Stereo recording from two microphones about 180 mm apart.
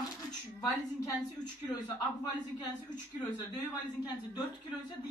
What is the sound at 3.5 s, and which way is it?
Speech, 25° left (ahead or behind).